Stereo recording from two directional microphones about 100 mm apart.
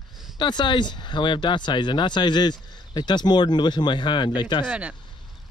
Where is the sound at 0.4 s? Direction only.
50° left (ahead or behind).